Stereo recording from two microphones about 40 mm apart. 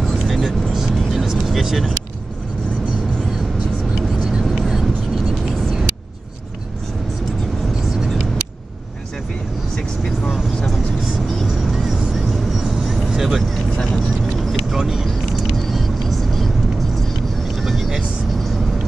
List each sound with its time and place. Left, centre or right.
0.3 s vehicle: centre
1.5 s speech: centre
3.9 s vehicle: centre
4.6 s vehicle: centre
11.4 s vehicle: centre
13.4 s vehicle: centre
14.7 s vehicle: centre
15.7 s vehicle: centre
17.6 s vehicle: centre